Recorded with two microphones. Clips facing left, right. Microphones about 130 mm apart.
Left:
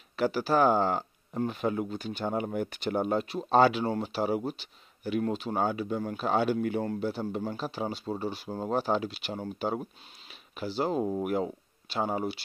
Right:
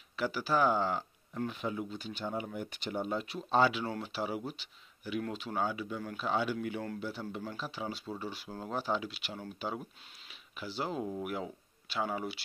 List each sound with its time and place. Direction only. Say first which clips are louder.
0.1 s speech: left 6 dB; 45° left (ahead or behind)
3.8 s speech: left 7 dB; 35° left (ahead or behind)